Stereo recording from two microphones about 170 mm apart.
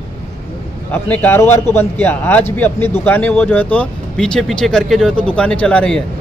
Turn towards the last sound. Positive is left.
turn(degrees=5)  # may be behind; listen again after turning